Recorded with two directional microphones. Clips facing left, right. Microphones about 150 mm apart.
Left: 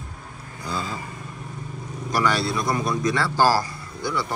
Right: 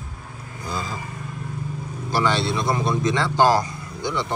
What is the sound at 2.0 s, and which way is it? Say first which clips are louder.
A man's voice: right 1 dB; 25° right (ahead or behind).